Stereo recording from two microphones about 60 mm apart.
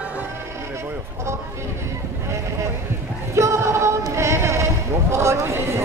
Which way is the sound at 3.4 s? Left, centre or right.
Right.